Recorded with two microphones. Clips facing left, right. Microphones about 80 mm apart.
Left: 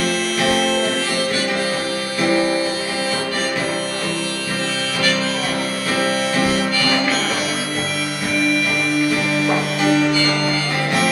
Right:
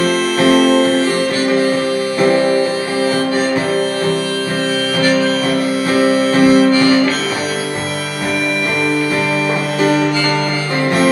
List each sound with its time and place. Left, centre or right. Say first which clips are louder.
0.0 s music: right 6 dB; right
2.2 s music: right 4 dB; right
5.9 s music: right 7 dB; right